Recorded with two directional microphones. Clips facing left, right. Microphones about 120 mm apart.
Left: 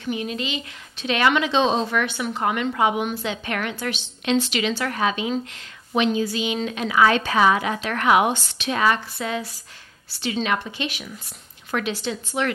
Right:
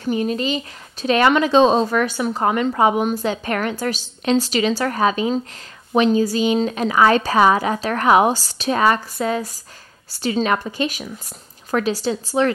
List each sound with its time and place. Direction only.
0.0 s a woman's voice: 40° right (ahead or behind)